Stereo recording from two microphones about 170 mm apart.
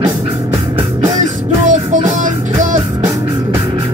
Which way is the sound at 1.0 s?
45° right (ahead or behind).